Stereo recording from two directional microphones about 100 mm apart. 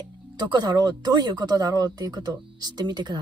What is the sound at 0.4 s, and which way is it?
A woman's voice, 45° right (ahead or behind).